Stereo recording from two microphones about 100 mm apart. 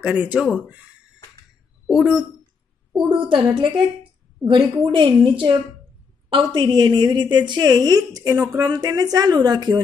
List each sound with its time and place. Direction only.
0.0 s speech: 10° right (ahead or behind)
1.9 s speech: 10° right (ahead or behind)
2.9 s a woman's voice: 50° right (ahead or behind)